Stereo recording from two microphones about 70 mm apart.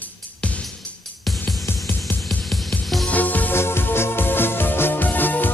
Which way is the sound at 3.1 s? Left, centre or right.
Left.